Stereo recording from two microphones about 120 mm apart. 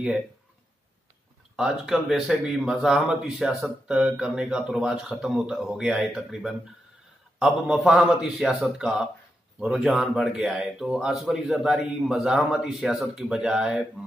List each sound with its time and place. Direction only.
1.6 s speech: 5° right (ahead or behind)